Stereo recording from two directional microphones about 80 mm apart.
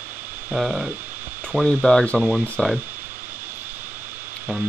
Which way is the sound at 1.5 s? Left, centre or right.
Right.